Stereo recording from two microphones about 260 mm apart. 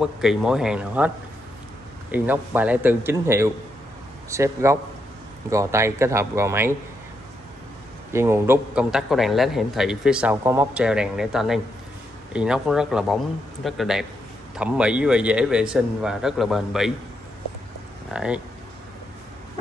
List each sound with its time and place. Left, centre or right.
0.0 s a man's voice: centre
8.1 s speech: centre
18.1 s speech: centre